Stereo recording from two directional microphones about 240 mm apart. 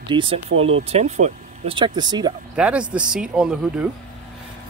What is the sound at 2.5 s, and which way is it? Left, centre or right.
Speech, centre.